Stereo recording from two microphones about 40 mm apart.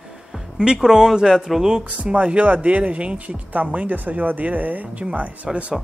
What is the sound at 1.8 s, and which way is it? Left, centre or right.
Speech, right.